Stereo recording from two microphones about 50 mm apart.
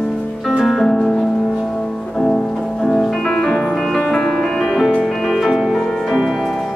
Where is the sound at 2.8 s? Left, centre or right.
Centre.